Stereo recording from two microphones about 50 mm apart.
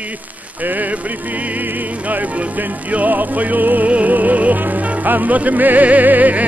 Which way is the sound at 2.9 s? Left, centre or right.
Right.